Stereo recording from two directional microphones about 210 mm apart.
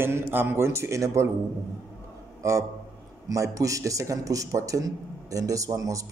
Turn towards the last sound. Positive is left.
turn(degrees=-15)  # may be behind; listen again after turning